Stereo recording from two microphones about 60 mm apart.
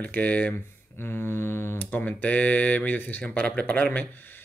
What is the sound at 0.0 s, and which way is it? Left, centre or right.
Speech, left.